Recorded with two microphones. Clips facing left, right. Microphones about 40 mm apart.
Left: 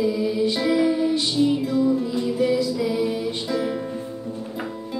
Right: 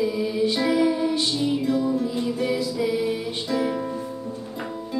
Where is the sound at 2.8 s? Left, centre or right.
Centre.